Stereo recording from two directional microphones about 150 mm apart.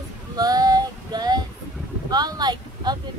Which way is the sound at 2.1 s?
25° right (ahead or behind).